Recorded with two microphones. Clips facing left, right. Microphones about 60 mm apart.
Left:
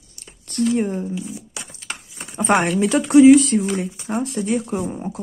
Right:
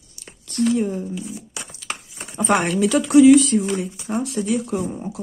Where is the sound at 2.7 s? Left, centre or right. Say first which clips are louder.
Even; left.